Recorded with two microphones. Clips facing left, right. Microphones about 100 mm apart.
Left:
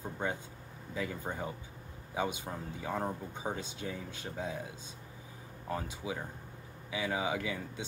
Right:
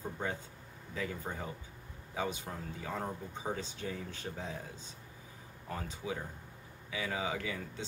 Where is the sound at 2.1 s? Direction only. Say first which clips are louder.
Left 2 dB; 15° left (ahead or behind).